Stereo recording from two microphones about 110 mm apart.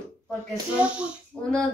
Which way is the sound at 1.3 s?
10° left (ahead or behind).